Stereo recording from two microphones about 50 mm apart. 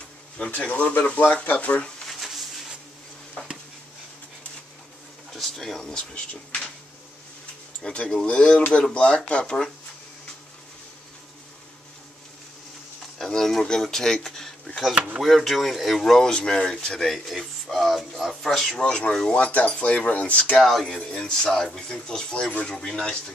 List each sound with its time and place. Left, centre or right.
0.6 s speech: left
2.0 s a sound: centre
5.3 s speech: centre; by 6.7 s left
7.8 s speech: centre
13.2 s speech: centre
16.0 s speech: centre
18.8 s speech: left
20.5 s speech: centre